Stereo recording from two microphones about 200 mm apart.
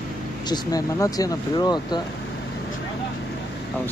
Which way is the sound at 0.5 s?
20° left (ahead or behind).